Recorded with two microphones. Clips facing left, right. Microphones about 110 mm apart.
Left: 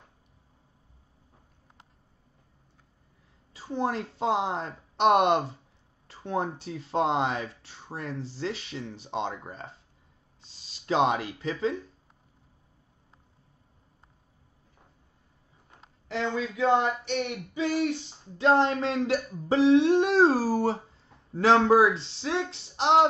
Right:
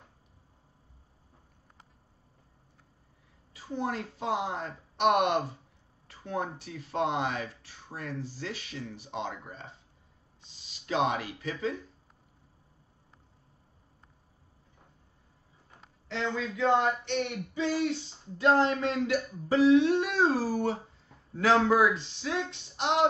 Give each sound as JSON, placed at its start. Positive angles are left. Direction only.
{"t": 3.5, "sound": "speech", "side_deg": 30}
{"t": 10.7, "sound": "speech", "side_deg": 30}
{"t": 16.2, "sound": "speech", "side_deg": 15}
{"t": 18.4, "sound": "speech", "side_deg": 25}